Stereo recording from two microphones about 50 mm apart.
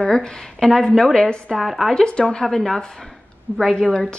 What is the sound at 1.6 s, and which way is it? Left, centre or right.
Speech, centre.